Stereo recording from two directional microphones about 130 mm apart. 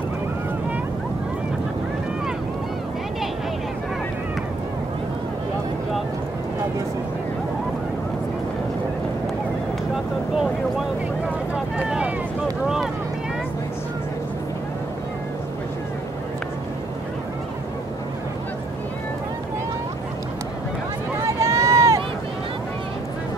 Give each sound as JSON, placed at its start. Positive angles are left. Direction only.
{"t": 11.5, "sound": "vehicle", "side_deg": -5}
{"t": 12.6, "sound": "boat", "side_deg": -5}
{"t": 21.4, "sound": "run", "side_deg": -25}